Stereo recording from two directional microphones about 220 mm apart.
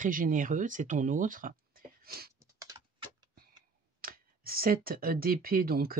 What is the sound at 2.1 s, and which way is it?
Typing, 45° right (ahead or behind).